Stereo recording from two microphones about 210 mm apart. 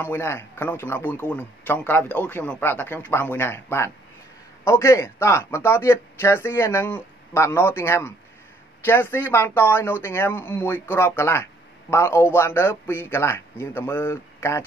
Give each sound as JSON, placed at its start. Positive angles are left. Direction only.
{"t": 0.0, "sound": "speech", "side_deg": 10}